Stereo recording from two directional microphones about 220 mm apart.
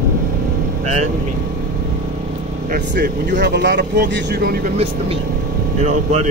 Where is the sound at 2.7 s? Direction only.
50° right (ahead or behind).